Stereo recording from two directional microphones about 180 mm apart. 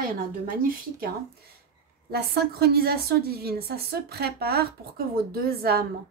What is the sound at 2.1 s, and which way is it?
A woman's voice, 60° right (ahead or behind).